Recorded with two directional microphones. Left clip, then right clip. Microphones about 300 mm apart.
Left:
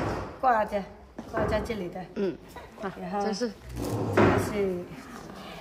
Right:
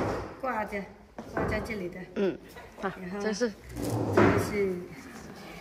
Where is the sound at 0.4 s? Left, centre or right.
Centre.